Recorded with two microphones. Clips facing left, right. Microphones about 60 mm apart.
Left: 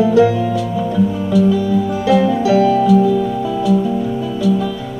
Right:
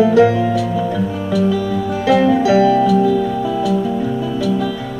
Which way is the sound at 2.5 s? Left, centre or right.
Right.